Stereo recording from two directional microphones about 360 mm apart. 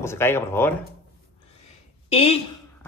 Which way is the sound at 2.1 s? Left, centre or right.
Centre.